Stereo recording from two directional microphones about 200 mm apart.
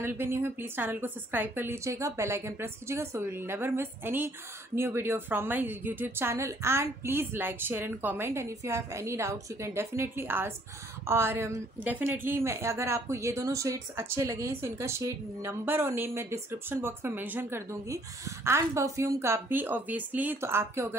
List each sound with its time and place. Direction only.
0.0 s a woman's voice: 10° right (ahead or behind)